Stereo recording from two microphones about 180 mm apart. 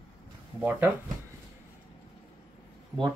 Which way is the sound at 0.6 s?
10° right (ahead or behind).